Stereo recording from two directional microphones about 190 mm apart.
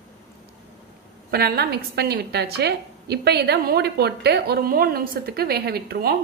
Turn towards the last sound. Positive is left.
turn(degrees=-55)  # may be behind; listen again after turning